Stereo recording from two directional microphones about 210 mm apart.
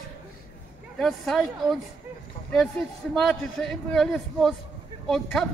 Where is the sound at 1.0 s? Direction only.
Centre (ahead or behind).